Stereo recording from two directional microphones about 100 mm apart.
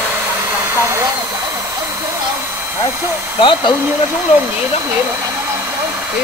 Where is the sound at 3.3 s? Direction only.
50° left (ahead or behind).